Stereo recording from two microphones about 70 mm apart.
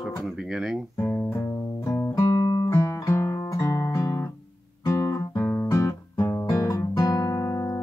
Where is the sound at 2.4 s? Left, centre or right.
Left.